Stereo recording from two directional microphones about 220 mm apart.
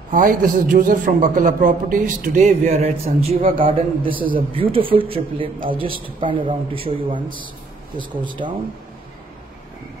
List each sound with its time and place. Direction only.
0.1 s a man's voice: 40° right (ahead or behind); by 8.5 s 20° right (ahead or behind)